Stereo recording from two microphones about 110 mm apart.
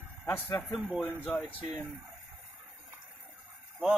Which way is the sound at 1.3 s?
15° left (ahead or behind).